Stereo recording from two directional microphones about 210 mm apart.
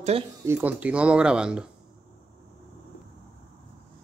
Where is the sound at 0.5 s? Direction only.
10° right (ahead or behind).